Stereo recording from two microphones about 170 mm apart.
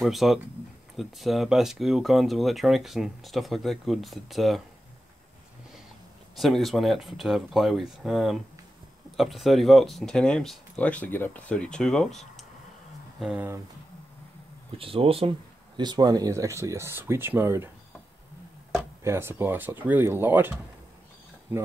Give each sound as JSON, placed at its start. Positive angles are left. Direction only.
{"t": 0.0, "sound": "speech", "side_deg": 0}
{"t": 6.3, "sound": "speech", "side_deg": 0}
{"t": 14.8, "sound": "speech", "side_deg": -35}
{"t": 19.0, "sound": "speech", "side_deg": -15}